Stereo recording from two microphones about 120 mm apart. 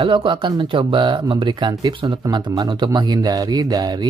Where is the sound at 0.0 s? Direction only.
45° right (ahead or behind).